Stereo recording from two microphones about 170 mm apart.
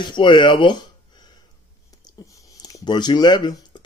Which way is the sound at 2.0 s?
20° left (ahead or behind).